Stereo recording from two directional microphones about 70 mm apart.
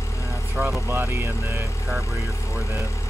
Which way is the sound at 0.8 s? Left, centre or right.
Right.